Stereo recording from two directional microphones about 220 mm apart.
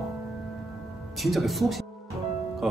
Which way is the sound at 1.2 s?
Centre (ahead or behind).